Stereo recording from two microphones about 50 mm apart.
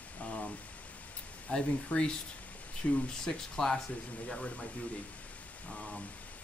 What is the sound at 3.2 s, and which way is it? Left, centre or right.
Speech, centre.